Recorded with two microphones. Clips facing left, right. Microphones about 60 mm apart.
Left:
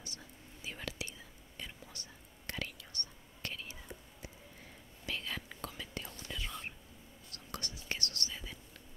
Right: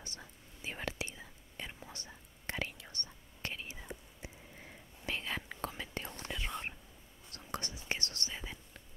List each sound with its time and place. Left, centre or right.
0.7 s whispering: right
5.0 s whispering: right